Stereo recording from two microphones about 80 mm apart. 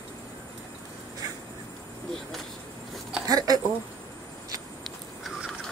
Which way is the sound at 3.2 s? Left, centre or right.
Right.